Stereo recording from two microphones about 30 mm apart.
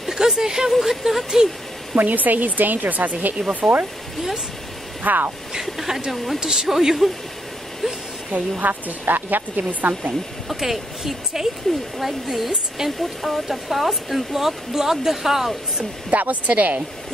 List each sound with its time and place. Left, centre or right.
0.1 s a sound: centre
0.7 s a woman's voice: centre
2.0 s speech: right
5.0 s speech: right
5.8 s speech: centre
6.1 s speech: centre
6.4 s speech: right
7.0 s a woman's voice: centre
8.3 s speech: right
10.5 s a woman's voice: centre
12.4 s a woman's voice: centre
13.0 s a woman's voice: centre
16.1 s speech: right